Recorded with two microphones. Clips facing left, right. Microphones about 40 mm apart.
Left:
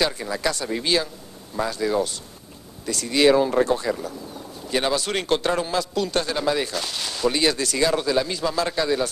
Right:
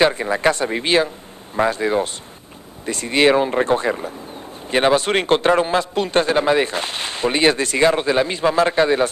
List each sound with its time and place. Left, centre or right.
0.0 s a man's voice: right